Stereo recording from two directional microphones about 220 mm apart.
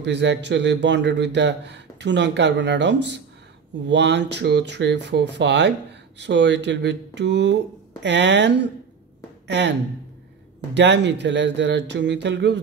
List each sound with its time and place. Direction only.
0.0 s speech: 50° right (ahead or behind)